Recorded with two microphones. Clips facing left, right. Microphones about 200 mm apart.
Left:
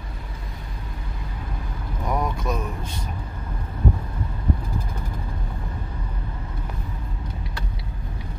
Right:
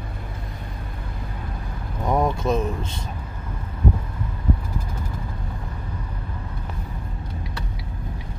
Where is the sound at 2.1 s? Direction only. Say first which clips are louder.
Right 5 dB; 25° right (ahead or behind).